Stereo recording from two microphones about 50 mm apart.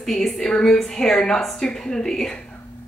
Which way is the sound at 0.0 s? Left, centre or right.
Centre.